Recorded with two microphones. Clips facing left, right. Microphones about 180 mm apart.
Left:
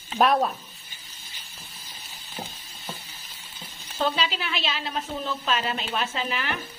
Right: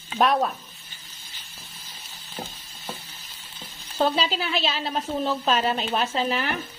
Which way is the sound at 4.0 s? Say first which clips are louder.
Right 3 dB; 35° right (ahead or behind).